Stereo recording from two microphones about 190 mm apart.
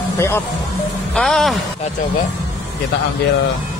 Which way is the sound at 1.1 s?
Centre (ahead or behind).